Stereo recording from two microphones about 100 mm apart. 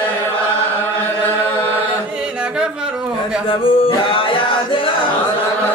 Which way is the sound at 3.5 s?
60° left (ahead or behind).